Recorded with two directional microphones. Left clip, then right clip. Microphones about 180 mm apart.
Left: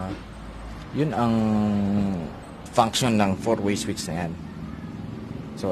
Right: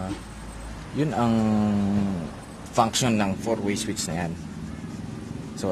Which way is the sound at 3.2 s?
20° left (ahead or behind).